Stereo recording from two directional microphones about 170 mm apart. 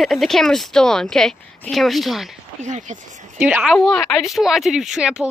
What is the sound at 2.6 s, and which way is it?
Speech, 45° right (ahead or behind).